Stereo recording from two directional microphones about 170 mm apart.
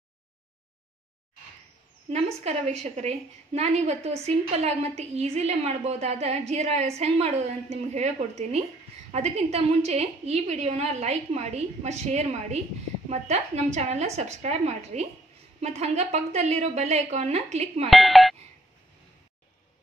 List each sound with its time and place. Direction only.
2.4 s a woman's voice: 40° right (ahead or behind)
17.8 s speech: centre (ahead or behind)